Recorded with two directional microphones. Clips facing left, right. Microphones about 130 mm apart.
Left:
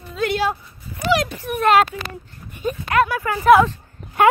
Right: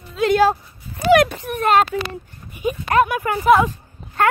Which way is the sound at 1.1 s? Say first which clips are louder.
Right 7 dB; 55° right (ahead or behind).